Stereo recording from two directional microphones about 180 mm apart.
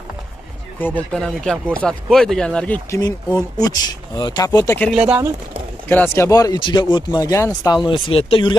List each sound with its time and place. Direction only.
0.7 s speech: 10° left (ahead or behind)
3.0 s speech: 20° left (ahead or behind)
4.9 s speech: 5° right (ahead or behind)
5.9 s speech: 10° left (ahead or behind); by 8.5 s 30° left (ahead or behind)